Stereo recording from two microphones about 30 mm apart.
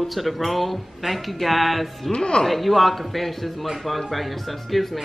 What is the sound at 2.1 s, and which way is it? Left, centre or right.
Speech, left.